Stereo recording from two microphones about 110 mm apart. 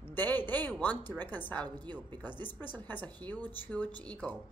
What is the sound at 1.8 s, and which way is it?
Speech, 40° right (ahead or behind).